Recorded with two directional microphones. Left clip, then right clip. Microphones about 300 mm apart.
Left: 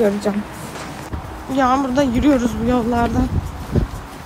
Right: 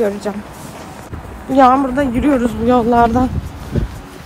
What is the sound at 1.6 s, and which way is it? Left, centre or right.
A woman's voice, centre.